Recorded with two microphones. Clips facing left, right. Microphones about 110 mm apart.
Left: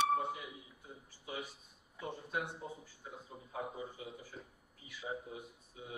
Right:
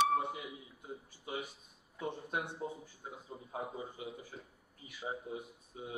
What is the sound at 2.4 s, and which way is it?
Speech, 25° right (ahead or behind).